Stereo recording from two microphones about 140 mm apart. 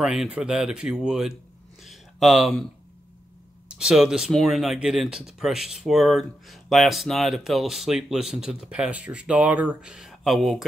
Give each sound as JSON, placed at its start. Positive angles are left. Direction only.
{"t": 0.0, "sound": "a man's voice", "side_deg": -5}
{"t": 3.6, "sound": "speech", "side_deg": -5}